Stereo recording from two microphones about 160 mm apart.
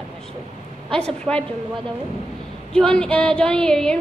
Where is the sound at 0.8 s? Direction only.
5° left (ahead or behind).